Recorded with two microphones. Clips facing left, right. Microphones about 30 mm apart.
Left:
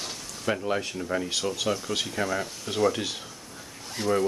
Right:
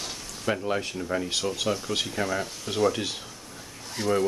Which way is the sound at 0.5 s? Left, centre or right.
Centre.